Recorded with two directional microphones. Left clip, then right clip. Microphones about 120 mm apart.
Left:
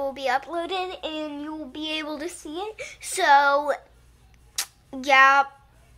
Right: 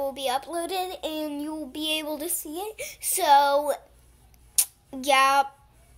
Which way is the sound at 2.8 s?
Centre (ahead or behind).